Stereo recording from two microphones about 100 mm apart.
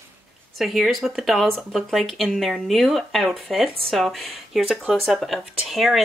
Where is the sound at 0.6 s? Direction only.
Centre (ahead or behind).